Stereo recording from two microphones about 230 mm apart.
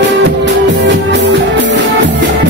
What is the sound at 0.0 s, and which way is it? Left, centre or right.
Music, right.